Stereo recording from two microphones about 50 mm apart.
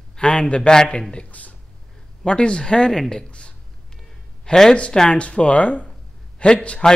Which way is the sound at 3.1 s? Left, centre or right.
Centre.